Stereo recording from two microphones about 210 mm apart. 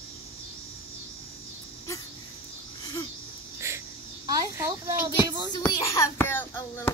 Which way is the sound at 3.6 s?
10° right (ahead or behind).